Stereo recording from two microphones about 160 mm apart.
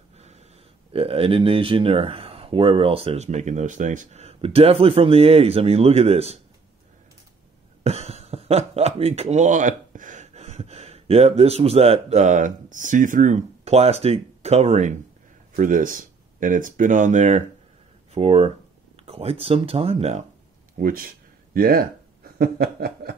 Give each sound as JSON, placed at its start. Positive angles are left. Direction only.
{"t": 0.2, "sound": "a sound", "side_deg": -40}
{"t": 0.9, "sound": "speech", "side_deg": -35}
{"t": 7.8, "sound": "speech", "side_deg": -40}
{"t": 15.5, "sound": "speech", "side_deg": -55}
{"t": 18.1, "sound": "speech", "side_deg": -40}
{"t": 20.7, "sound": "speech", "side_deg": -60}
{"t": 21.5, "sound": "snicker", "side_deg": -65}